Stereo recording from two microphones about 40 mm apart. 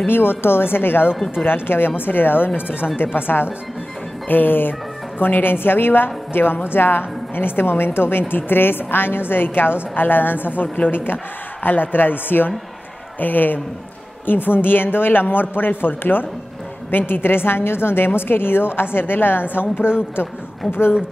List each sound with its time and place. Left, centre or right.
0.0 s a woman's voice: left